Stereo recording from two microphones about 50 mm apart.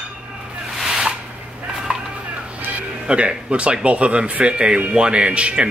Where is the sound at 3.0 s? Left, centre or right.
Right.